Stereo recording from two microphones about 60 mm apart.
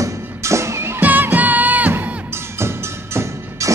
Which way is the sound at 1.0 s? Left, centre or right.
Right.